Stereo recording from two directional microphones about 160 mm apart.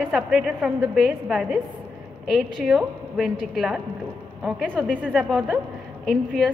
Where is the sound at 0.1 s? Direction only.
5° right (ahead or behind).